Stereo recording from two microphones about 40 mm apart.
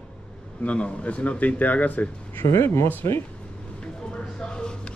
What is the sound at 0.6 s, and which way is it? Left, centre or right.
A man's voice, left.